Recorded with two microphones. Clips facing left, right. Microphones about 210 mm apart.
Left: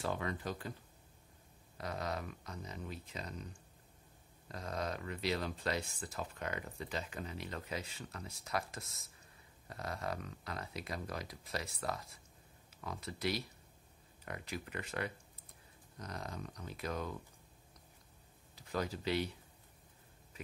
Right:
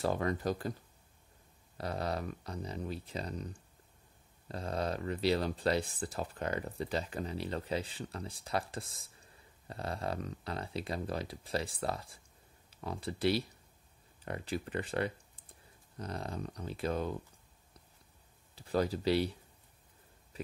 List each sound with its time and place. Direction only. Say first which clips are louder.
0.0 s speech: right 6 dB; 40° right (ahead or behind)
1.8 s speech: right 4 dB; 35° right (ahead or behind)
4.5 s speech: right 5 dB; 30° right (ahead or behind)
18.5 s speech: right 7 dB; 30° right (ahead or behind)
20.3 s a sound: right 7 dB; 35° right (ahead or behind)